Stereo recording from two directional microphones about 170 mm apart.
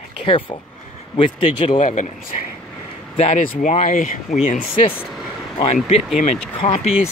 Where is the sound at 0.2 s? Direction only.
30° left (ahead or behind).